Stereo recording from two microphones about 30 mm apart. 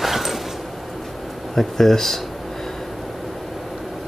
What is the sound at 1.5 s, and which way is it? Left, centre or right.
Speech, centre.